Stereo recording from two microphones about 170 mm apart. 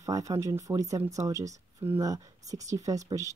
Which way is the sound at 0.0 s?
20° right (ahead or behind).